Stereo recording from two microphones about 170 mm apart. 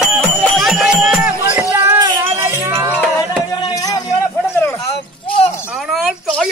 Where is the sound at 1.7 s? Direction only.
10° right (ahead or behind).